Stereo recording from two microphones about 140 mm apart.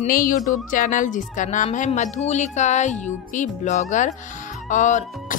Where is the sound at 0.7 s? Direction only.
70° left (ahead or behind).